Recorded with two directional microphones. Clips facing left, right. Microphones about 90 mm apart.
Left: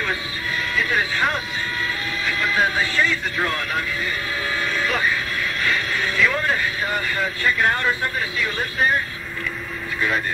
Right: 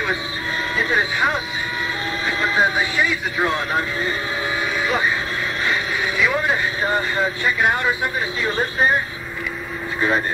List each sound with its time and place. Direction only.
0.7 s a sound: 25° right (ahead or behind)
2.2 s speech: 25° right (ahead or behind)
4.7 s vehicle: 15° right (ahead or behind)
5.6 s a sound: 15° right (ahead or behind)
6.8 s speech: 25° right (ahead or behind)
8.4 s speech: 30° right (ahead or behind)